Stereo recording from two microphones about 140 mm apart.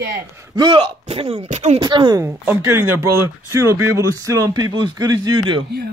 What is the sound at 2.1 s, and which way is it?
Speech, 20° right (ahead or behind).